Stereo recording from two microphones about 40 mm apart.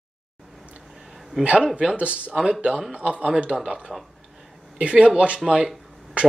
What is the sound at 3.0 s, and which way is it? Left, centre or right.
Speech, right.